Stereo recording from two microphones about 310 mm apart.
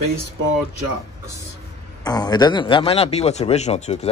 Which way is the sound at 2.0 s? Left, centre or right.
Centre.